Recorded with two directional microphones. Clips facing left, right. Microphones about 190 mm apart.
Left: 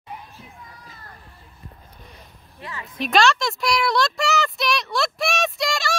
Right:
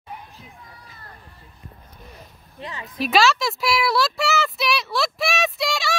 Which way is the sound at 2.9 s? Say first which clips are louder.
Even; 5° right (ahead or behind).